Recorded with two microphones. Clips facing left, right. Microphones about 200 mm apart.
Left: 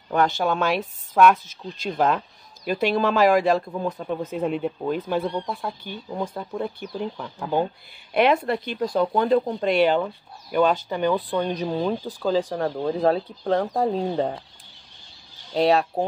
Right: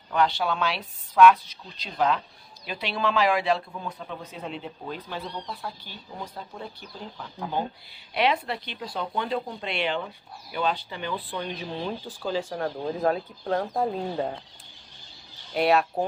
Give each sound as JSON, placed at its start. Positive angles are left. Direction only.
{"t": 0.1, "sound": "speech", "side_deg": 45}
{"t": 8.1, "sound": "speech", "side_deg": 50}
{"t": 15.5, "sound": "speech", "side_deg": 35}